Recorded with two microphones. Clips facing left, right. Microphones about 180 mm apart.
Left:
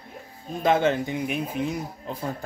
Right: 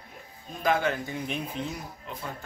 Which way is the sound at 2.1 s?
35° left (ahead or behind).